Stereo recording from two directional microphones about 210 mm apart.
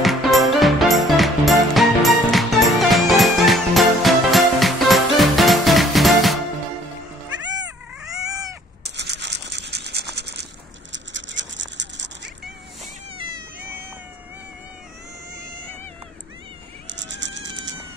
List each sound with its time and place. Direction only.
0.0 s music: centre (ahead or behind)
8.2 s cat: 15° right (ahead or behind)
8.8 s scratch: 55° right (ahead or behind)
10.1 s a sound: 50° right (ahead or behind)
10.9 s toothbrush: 60° right (ahead or behind)
16.8 s a sound: 60° right (ahead or behind)